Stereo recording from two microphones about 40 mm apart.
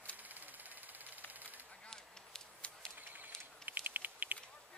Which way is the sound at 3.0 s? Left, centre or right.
Right.